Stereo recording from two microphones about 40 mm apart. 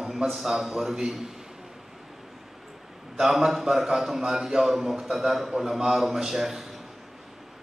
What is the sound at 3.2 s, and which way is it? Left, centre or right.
A man's voice, centre.